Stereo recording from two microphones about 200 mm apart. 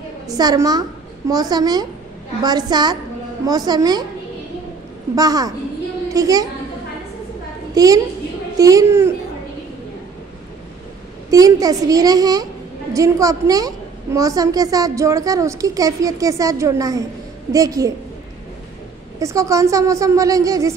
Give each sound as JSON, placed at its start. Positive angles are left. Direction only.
{"t": 0.3, "sound": "a woman's voice", "side_deg": -20}
{"t": 5.1, "sound": "a woman's voice", "side_deg": -20}
{"t": 7.7, "sound": "a woman's voice", "side_deg": -20}
{"t": 11.2, "sound": "a woman's voice", "side_deg": -20}
{"t": 19.1, "sound": "a woman's voice", "side_deg": -15}